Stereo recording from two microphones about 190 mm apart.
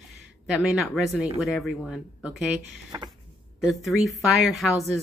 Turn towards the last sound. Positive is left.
turn(degrees=0)  # may be behind; listen again after turning